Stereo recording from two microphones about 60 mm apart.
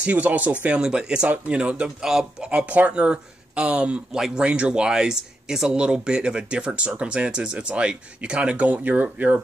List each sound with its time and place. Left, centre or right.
0.0 s speech: right